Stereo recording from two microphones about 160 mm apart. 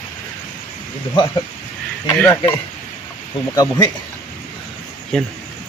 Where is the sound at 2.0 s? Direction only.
15° left (ahead or behind).